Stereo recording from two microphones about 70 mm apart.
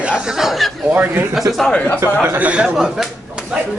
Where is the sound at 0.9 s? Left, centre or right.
Right.